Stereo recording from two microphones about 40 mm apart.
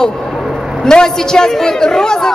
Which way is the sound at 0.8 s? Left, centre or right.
Centre.